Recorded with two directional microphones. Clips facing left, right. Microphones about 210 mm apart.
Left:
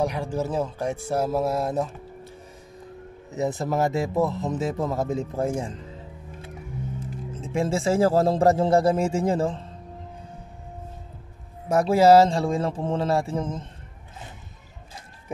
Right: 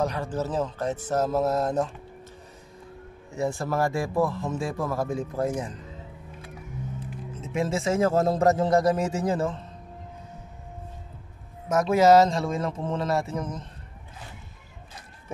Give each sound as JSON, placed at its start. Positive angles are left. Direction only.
{"t": 0.0, "sound": "speech", "side_deg": 10}
{"t": 3.3, "sound": "speech", "side_deg": 20}
{"t": 7.3, "sound": "speech", "side_deg": 30}
{"t": 11.7, "sound": "speech", "side_deg": 30}